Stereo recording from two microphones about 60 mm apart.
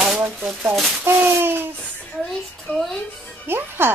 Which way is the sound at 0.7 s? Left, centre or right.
Centre.